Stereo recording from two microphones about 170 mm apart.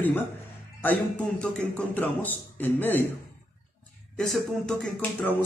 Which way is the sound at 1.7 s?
10° left (ahead or behind).